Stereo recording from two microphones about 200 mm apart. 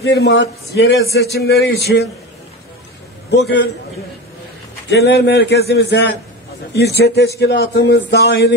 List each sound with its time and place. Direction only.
0.0 s a man's voice: 55° left (ahead or behind)
4.8 s a man's voice: 55° left (ahead or behind)